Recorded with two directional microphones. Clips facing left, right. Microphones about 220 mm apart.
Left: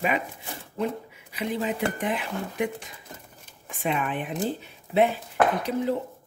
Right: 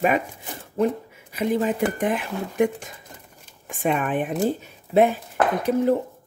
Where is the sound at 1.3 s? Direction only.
50° right (ahead or behind).